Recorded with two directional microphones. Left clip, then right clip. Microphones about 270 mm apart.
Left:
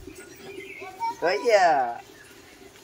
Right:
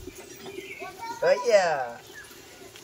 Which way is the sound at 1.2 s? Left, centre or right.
Left.